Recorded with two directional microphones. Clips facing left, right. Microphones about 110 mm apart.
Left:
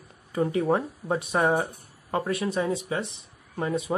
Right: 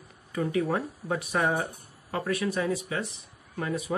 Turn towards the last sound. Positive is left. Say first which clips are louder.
# left 3 dB
turn(degrees=25)  # may be behind; listen again after turning